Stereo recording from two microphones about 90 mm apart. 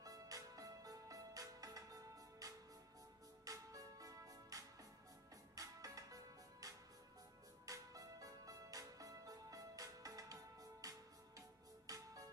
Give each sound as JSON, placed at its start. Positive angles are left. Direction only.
{"t": 0.0, "sound": "music", "side_deg": -40}